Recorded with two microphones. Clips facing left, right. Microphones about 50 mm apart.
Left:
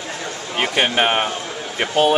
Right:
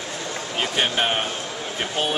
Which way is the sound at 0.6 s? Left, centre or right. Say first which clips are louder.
Left 5 dB; left.